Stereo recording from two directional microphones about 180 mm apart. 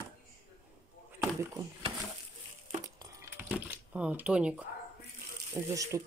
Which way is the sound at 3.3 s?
10° right (ahead or behind).